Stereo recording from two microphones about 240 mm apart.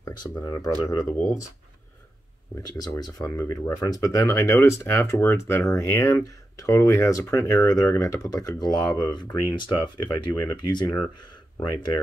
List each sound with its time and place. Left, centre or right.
0.0 s speech: centre
2.6 s speech: centre